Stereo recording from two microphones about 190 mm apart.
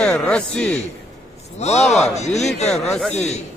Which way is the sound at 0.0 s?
5° left (ahead or behind).